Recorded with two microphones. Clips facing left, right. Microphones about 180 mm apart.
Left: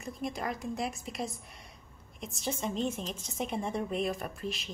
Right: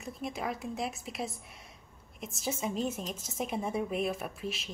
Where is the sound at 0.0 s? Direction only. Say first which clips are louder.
Left 1 dB; centre (ahead or behind).